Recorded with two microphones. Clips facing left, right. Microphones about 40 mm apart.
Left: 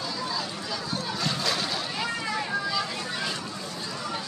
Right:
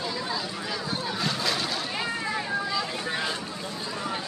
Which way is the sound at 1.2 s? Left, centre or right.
Centre.